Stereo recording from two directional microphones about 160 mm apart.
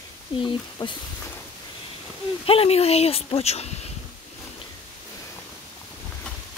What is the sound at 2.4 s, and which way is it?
Speech, 35° left (ahead or behind).